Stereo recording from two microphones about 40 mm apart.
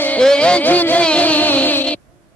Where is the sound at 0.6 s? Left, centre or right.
Left.